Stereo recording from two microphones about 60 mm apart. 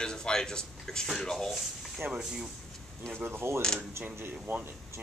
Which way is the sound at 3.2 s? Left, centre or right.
Right.